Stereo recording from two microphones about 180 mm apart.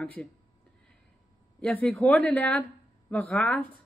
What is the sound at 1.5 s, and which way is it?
Speech, 5° left (ahead or behind).